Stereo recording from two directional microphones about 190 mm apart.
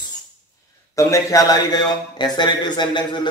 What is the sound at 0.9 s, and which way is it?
A man's voice, 15° left (ahead or behind).